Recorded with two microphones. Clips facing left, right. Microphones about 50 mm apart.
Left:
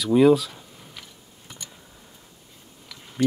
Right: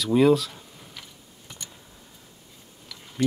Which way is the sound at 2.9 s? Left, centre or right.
Centre.